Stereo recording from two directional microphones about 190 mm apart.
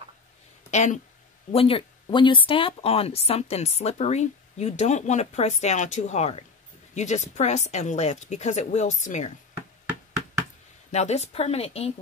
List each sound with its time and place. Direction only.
0.7 s speech: 40° left (ahead or behind)
10.9 s speech: 35° left (ahead or behind)